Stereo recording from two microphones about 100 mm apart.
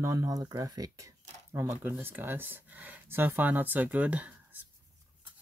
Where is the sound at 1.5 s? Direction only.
20° right (ahead or behind).